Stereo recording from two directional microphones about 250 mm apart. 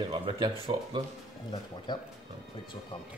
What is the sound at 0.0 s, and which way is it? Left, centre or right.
Speech, centre.